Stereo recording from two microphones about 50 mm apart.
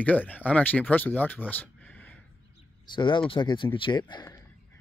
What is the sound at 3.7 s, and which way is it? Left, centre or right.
Speech, left.